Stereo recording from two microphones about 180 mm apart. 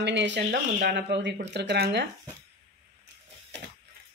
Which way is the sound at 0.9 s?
75° right (ahead or behind).